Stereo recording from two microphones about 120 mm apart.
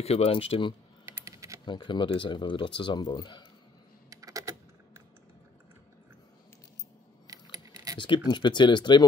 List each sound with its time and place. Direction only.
0.0 s speech: 60° left (ahead or behind)
1.0 s typing: 25° right (ahead or behind)
1.7 s speech: 40° left (ahead or behind)
4.1 s typing: 30° right (ahead or behind)
7.5 s typing: 30° right (ahead or behind)
8.0 s speech: 40° left (ahead or behind)